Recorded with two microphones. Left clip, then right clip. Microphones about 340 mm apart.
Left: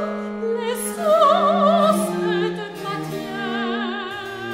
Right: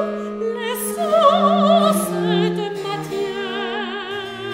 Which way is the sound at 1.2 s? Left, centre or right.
Right.